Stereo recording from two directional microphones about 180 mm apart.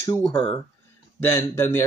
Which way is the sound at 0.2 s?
30° left (ahead or behind).